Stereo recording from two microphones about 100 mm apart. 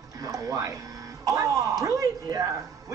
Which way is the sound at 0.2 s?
35° right (ahead or behind).